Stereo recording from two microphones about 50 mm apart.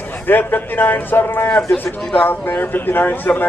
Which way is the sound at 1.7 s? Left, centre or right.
Centre.